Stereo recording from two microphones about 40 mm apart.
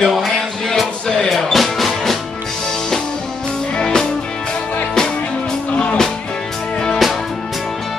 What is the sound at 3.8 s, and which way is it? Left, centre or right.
Music, centre.